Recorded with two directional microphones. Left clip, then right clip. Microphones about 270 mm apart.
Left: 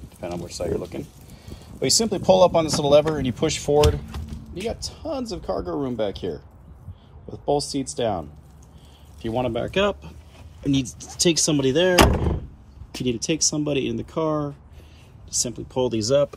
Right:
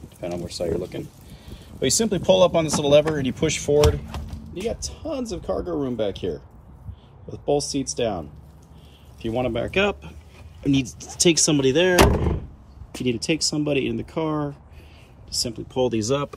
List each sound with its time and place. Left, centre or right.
0.2 s speech: centre
15.2 s speech: right
15.5 s speech: centre